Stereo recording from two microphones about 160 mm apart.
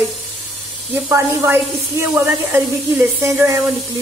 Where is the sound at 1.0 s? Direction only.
15° right (ahead or behind).